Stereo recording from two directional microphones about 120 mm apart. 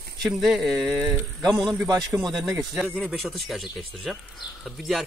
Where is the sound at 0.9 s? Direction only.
15° right (ahead or behind).